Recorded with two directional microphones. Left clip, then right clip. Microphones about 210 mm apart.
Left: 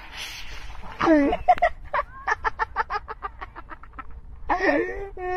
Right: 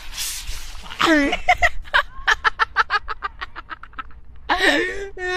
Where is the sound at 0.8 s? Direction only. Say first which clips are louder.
Right 2 dB; centre (ahead or behind).